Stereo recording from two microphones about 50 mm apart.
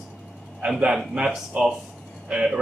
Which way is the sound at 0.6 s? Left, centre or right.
Right.